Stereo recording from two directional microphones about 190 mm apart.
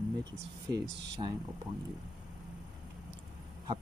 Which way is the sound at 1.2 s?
30° right (ahead or behind).